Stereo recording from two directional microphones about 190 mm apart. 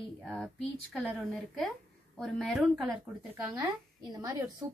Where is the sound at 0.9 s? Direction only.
5° left (ahead or behind).